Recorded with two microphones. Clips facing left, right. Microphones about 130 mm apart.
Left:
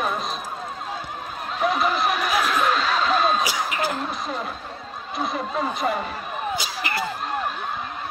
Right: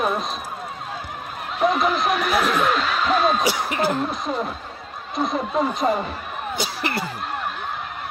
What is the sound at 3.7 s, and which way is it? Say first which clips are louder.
Speech: right 4 dB; 25° right (ahead or behind).